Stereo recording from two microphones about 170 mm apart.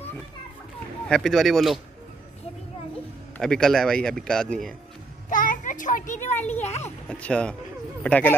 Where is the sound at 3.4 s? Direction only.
5° left (ahead or behind).